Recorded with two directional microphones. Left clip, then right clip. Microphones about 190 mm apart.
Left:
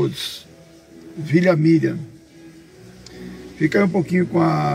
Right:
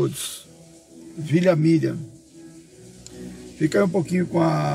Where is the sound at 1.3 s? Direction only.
20° right (ahead or behind).